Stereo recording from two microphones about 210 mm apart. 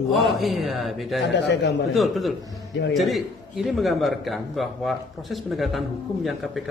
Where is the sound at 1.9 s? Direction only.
Centre (ahead or behind).